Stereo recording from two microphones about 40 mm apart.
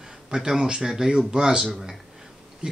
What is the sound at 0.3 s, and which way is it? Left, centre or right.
Speech, centre.